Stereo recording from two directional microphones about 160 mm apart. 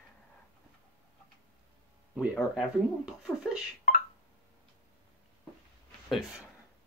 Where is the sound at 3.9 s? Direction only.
60° left (ahead or behind).